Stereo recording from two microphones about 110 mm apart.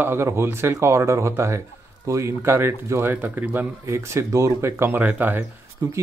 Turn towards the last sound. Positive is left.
turn(degrees=-35)  # may be behind; listen again after turning